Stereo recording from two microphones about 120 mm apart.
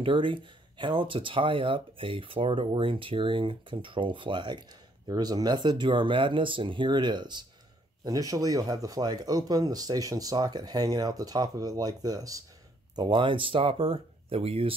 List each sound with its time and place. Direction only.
0.0 s speech: 45° right (ahead or behind)
12.9 s speech: 40° right (ahead or behind)